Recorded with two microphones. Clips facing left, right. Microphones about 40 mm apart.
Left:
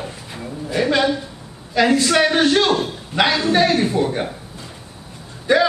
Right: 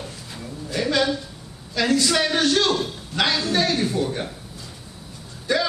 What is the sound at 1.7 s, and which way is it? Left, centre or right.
A man's voice, left.